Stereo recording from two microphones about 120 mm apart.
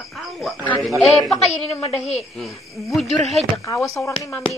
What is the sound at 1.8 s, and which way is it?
Speech, 65° left (ahead or behind).